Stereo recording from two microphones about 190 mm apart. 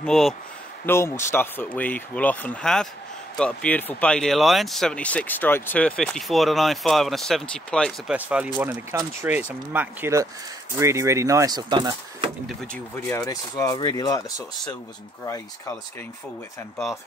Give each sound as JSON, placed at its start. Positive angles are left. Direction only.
{"t": 0.0, "sound": "speech", "side_deg": 0}
{"t": 0.8, "sound": "speech", "side_deg": 15}
{"t": 12.7, "sound": "speech", "side_deg": 10}